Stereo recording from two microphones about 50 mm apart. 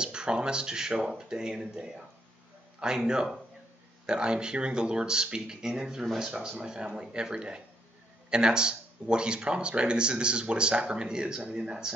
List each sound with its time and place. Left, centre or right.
0.0 s a man's voice: centre